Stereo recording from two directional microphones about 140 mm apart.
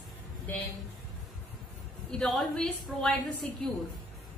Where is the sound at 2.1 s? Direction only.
Centre (ahead or behind).